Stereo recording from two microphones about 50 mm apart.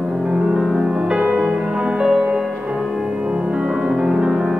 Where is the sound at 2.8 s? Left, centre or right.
Centre.